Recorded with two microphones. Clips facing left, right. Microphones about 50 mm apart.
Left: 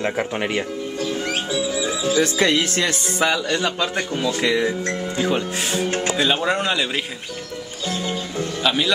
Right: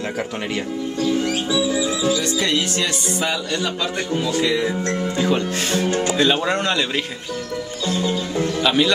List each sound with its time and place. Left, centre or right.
2.1 s music: left
3.3 s speech: centre
4.3 s music: left
4.6 s speech: centre
8.6 s speech: centre